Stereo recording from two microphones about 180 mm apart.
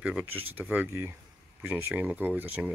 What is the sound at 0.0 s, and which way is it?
Speech, 10° right (ahead or behind).